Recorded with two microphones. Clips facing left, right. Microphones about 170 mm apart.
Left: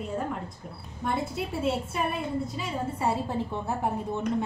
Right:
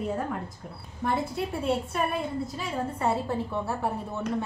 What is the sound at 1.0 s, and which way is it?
Speech, centre (ahead or behind).